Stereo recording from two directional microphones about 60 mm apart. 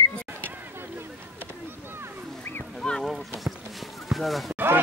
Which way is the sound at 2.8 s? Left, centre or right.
Centre.